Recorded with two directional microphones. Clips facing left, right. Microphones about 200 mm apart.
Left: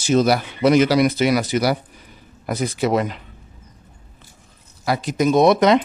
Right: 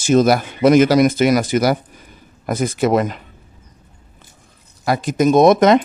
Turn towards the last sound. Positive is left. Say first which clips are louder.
# right 3 dB
turn(degrees=-50)  # may be behind; listen again after turning